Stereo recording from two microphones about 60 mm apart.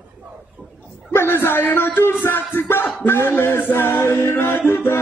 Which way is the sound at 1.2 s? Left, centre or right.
Left.